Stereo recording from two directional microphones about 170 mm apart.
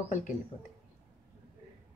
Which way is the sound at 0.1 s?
50° left (ahead or behind).